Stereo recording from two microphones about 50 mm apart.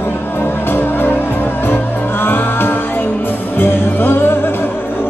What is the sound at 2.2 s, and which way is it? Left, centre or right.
Music, left.